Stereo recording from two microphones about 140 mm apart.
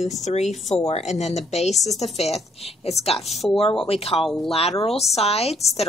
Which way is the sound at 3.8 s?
45° left (ahead or behind).